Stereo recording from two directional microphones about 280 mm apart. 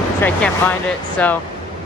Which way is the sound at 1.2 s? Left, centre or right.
Centre.